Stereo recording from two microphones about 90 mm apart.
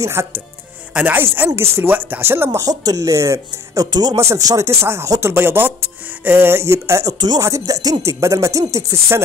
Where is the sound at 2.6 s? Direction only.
45° right (ahead or behind).